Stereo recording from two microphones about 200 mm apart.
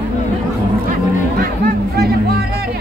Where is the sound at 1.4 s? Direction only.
50° right (ahead or behind).